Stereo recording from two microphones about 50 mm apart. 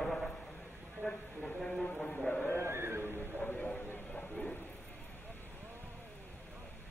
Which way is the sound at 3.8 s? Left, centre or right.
Left.